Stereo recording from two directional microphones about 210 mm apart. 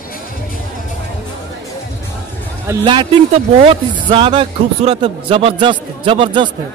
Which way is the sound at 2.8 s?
25° right (ahead or behind).